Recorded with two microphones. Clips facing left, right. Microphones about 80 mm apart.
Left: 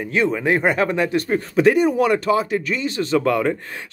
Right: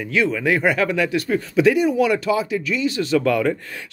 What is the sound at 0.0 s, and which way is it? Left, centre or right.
Speech, left.